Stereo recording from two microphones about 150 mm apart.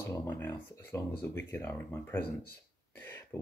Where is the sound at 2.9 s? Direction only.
15° left (ahead or behind).